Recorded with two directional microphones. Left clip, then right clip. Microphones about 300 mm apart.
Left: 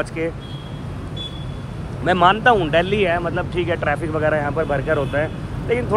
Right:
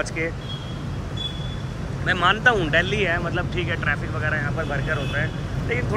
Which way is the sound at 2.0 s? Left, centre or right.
Centre.